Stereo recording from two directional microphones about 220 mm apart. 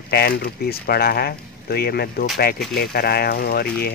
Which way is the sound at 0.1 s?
45° left (ahead or behind).